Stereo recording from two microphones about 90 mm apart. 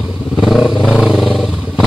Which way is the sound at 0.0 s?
5° right (ahead or behind).